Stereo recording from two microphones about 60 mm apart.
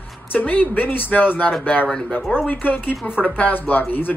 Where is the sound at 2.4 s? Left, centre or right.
Left.